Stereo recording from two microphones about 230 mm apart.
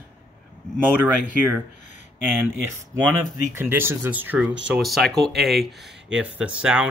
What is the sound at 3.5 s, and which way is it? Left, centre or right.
Speech, centre.